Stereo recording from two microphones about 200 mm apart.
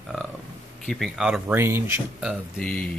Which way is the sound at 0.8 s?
Centre (ahead or behind).